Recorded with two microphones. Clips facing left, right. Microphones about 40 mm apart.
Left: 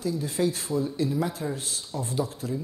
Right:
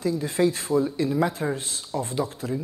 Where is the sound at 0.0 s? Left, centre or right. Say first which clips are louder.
Right 4 dB; right.